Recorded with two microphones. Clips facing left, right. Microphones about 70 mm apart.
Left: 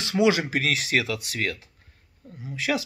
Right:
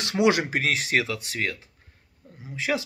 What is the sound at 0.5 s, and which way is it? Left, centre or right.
Speech, right.